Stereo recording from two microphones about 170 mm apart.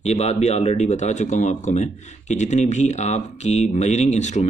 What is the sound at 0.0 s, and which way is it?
Speech, 40° left (ahead or behind).